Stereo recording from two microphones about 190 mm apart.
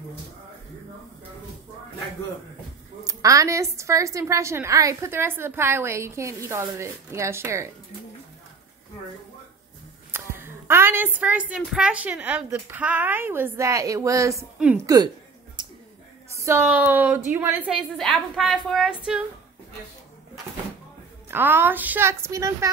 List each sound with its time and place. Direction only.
3.0 s a woman's voice: 15° right (ahead or behind)
10.1 s a woman's voice: 10° right (ahead or behind)
15.6 s a sound: 25° right (ahead or behind)
16.3 s a woman's voice: 15° right (ahead or behind)
17.9 s a woman's voice: centre (ahead or behind)
21.3 s a woman's voice: 10° right (ahead or behind)